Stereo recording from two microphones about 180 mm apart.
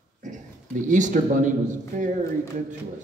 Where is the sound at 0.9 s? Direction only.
45° right (ahead or behind).